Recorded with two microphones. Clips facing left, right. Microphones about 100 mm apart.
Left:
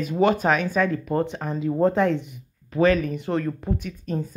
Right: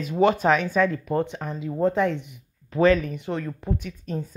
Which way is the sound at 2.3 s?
25° right (ahead or behind).